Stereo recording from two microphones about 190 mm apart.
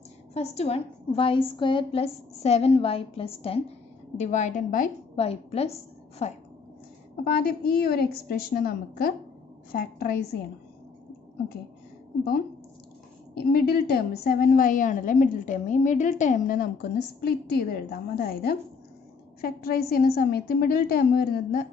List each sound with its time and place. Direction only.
0.3 s a woman's voice: 35° left (ahead or behind)
5.1 s a woman's voice: 30° left (ahead or behind)
7.2 s a woman's voice: 55° left (ahead or behind)
13.3 s a woman's voice: 55° left (ahead or behind)